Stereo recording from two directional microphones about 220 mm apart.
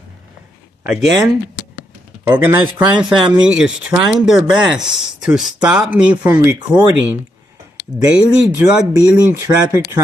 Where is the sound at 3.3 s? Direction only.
5° right (ahead or behind).